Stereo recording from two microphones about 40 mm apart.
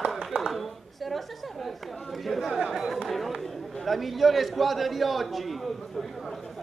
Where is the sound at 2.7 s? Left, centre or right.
Centre.